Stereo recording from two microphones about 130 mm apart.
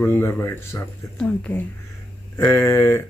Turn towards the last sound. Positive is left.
turn(degrees=20)  # may be behind; listen again after turning